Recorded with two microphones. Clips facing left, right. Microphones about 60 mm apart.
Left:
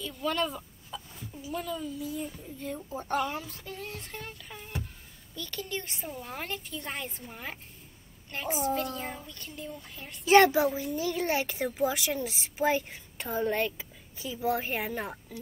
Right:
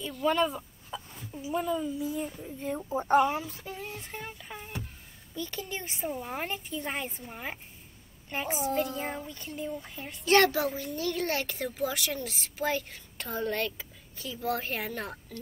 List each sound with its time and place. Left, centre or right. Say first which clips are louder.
0.3 s speech: right 4 dB; centre
1.4 s speech: right 5 dB; centre
2.0 s a child's voice: right 3 dB; centre
2.3 s speech: right 3 dB; centre
3.5 s music: right 1 dB; centre
8.3 s a woman's voice: right 1 dB; centre
8.5 s a child's voice: even; centre
9.1 s music: right 4 dB; centre
10.2 s a child's voice: left 3 dB; centre